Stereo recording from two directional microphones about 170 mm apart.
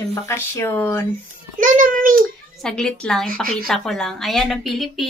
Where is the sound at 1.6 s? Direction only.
50° right (ahead or behind).